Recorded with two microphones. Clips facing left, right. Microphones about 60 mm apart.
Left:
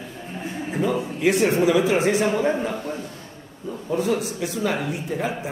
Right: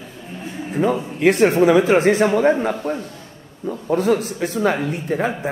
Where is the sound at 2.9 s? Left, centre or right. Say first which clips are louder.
Right 6 dB; right.